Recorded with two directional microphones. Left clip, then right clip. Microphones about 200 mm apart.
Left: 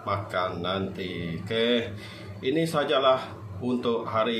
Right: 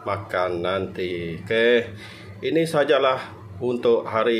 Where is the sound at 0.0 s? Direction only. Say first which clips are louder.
Right 4 dB; 45° right (ahead or behind).